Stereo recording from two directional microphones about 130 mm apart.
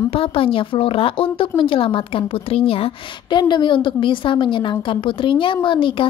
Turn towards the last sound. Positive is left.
turn(degrees=40)  # may be behind; listen again after turning